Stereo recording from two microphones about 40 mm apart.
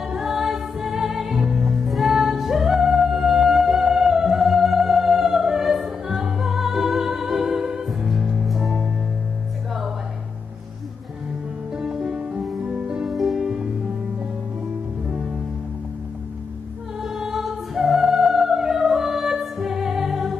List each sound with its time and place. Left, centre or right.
0.0 s music: centre
11.7 s music: centre
13.0 s music: centre
17.0 s music: centre